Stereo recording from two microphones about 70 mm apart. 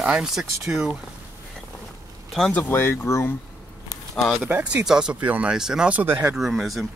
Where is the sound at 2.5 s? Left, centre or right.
Left.